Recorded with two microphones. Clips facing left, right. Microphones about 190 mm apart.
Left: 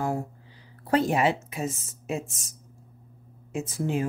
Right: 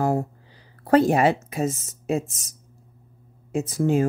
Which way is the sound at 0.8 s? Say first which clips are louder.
Right 5 dB; 45° right (ahead or behind).